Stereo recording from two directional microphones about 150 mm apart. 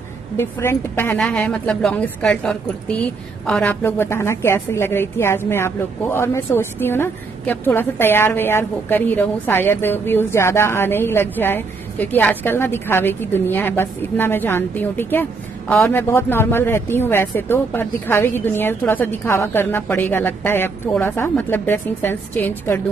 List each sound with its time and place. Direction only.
0.4 s a woman's voice: 15° left (ahead or behind)